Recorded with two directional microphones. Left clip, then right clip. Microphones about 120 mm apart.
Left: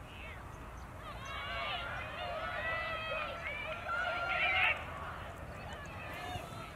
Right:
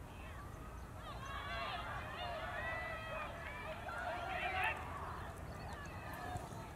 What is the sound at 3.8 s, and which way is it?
Neigh, 10° left (ahead or behind).